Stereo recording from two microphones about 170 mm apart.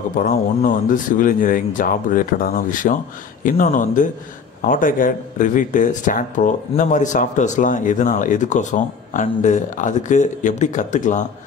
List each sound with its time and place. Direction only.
0.1 s speech: 55° left (ahead or behind)